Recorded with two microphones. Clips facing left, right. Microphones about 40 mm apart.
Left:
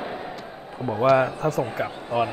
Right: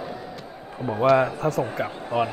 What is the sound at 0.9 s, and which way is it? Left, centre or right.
Speech, centre.